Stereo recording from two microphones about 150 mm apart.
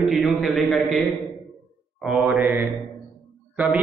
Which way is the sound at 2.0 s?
5° right (ahead or behind).